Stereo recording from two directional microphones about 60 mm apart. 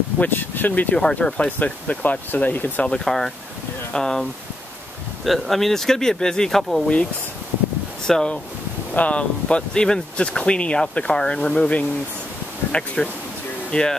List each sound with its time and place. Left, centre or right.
0.2 s speech: left
0.9 s speech: centre; by 2.9 s left
2.9 s speech: centre
8.1 s speech: centre